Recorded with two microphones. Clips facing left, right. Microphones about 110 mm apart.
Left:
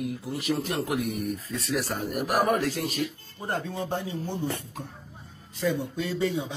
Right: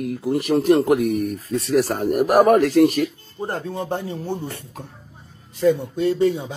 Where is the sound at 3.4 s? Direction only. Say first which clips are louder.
Right 4 dB; 30° right (ahead or behind).